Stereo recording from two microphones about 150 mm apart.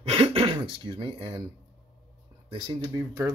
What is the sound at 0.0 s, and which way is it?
Speech, 40° right (ahead or behind).